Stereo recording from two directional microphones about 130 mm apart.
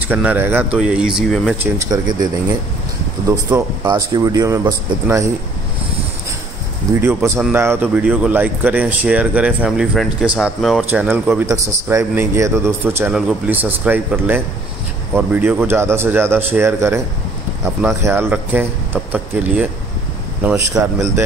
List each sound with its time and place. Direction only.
0.0 s a man's voice: 15° right (ahead or behind)
1.9 s speech: 30° right (ahead or behind)
3.8 s a man's voice: 30° right (ahead or behind)
6.9 s a man's voice: 20° right (ahead or behind)
9.7 s speech: centre (ahead or behind)
10.9 s a man's voice: 15° right (ahead or behind)